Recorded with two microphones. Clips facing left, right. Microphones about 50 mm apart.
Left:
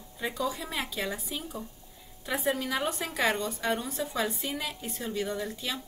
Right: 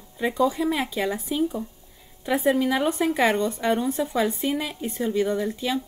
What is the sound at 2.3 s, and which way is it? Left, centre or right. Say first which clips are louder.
Speech: right 8 dB; right.